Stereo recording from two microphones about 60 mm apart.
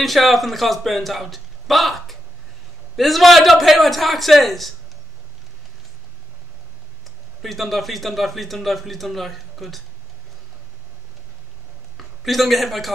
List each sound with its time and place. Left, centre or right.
0.0 s a man's voice: centre
7.4 s a man's voice: centre
12.0 s a man's voice: centre